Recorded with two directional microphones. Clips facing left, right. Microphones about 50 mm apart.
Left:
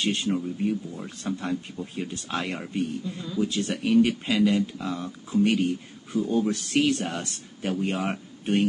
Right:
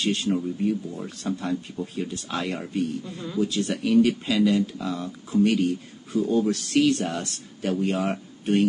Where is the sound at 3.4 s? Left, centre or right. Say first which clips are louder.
Right 1 dB; left.